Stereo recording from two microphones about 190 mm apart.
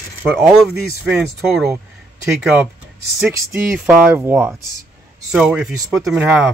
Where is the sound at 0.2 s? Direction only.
5° right (ahead or behind).